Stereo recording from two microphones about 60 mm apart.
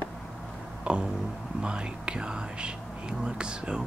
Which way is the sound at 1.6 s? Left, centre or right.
Centre.